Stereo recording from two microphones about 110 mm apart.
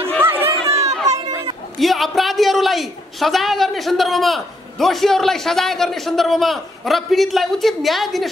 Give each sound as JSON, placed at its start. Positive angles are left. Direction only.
{"t": 0.2, "sound": "run", "side_deg": -20}
{"t": 0.5, "sound": "run", "side_deg": -70}
{"t": 1.1, "sound": "chatter", "side_deg": -45}
{"t": 1.8, "sound": "a woman's voice", "side_deg": 0}